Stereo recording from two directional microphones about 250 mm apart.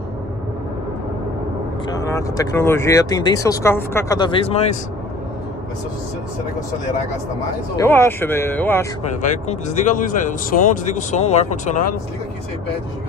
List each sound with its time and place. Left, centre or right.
1.9 s speech: centre
7.7 s speech: centre
9.2 s speech: left